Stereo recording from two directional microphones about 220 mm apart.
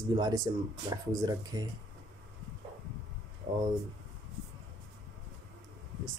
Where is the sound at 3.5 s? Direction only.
25° right (ahead or behind).